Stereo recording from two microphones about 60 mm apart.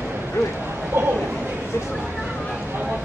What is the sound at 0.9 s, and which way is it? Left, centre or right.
Chatter, right.